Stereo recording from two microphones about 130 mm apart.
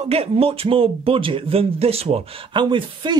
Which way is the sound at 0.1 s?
50° right (ahead or behind).